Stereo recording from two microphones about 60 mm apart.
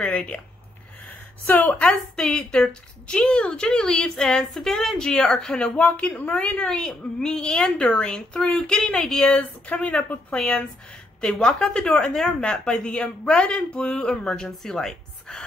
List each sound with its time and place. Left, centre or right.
0.0 s a woman's voice: centre
1.4 s a woman's voice: left
2.1 s a woman's voice: centre
9.2 s a woman's voice: left